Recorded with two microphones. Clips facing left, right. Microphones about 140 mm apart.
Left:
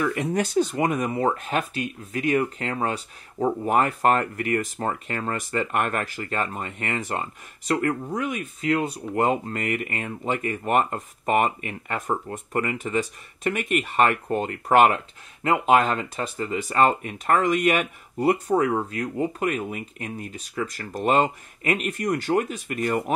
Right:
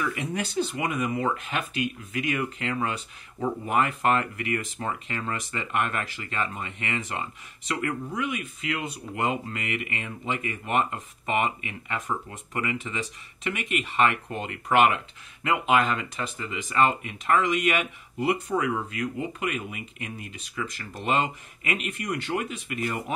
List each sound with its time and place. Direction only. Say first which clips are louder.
0.0 s speech: left 6 dB; 45° left (ahead or behind)